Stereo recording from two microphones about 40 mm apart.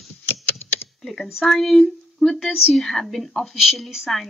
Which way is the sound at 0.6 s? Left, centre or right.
Left.